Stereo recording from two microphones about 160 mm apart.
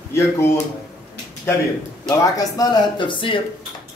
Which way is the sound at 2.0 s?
20° left (ahead or behind).